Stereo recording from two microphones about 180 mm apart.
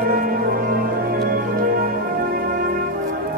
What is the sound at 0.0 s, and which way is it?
Music, 55° right (ahead or behind).